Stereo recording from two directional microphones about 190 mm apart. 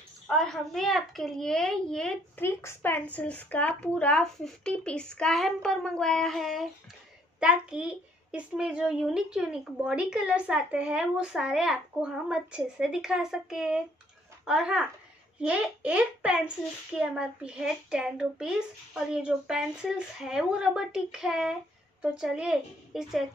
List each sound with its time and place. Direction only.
0.3 s a child's voice: centre (ahead or behind)